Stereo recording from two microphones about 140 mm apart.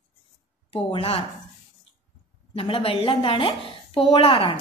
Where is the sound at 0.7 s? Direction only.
40° left (ahead or behind).